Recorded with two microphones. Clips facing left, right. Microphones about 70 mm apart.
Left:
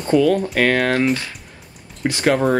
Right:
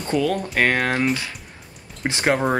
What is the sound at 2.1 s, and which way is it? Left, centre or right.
Speech, right.